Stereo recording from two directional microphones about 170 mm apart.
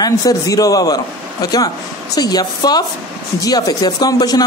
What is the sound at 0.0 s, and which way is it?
Speech, 20° left (ahead or behind).